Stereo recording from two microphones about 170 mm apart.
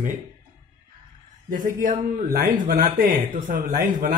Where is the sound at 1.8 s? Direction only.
50° right (ahead or behind).